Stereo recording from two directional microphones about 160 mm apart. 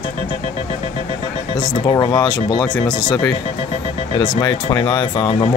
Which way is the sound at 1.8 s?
20° left (ahead or behind).